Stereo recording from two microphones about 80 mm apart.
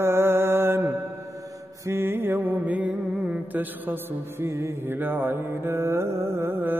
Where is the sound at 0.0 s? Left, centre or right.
Right.